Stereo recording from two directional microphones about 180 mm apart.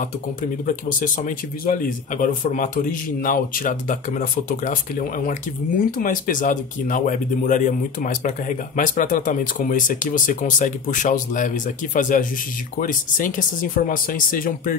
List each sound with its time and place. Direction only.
0.4 s speech: 50° left (ahead or behind)